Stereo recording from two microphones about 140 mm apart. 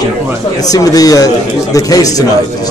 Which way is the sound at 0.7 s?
25° left (ahead or behind).